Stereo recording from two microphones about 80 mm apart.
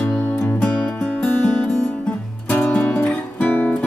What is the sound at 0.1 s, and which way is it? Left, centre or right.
Music, centre.